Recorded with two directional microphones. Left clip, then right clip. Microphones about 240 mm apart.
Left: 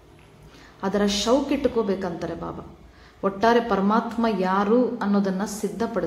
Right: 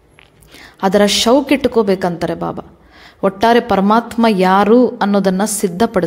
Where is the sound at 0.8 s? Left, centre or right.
Right.